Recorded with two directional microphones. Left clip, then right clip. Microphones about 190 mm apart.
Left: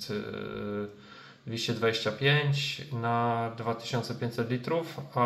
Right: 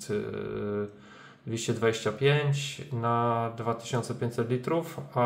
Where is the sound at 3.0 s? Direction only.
20° right (ahead or behind).